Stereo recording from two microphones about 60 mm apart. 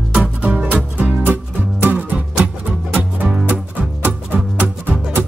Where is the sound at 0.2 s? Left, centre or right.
Right.